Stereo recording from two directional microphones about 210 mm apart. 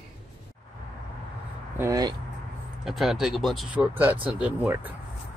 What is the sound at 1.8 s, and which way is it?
Speech, 15° right (ahead or behind).